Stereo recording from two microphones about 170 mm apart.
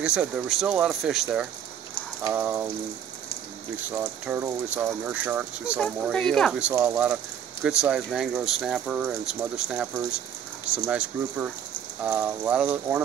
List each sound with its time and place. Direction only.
0.0 s speech: 5° right (ahead or behind)
3.9 s speech: 15° right (ahead or behind)
6.1 s speech: 5° left (ahead or behind)
6.7 s speech: 20° right (ahead or behind)
7.6 s speech: 5° right (ahead or behind)